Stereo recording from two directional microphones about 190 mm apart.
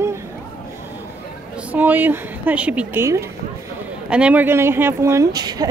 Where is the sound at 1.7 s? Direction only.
10° right (ahead or behind).